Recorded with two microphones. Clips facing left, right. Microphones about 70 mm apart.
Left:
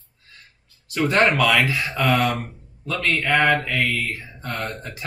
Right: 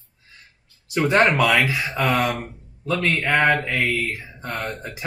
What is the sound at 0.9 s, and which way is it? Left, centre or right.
Speech, right.